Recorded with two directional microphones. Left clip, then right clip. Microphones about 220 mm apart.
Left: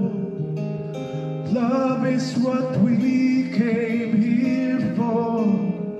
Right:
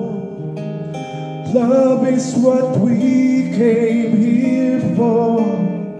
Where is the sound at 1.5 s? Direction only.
25° right (ahead or behind).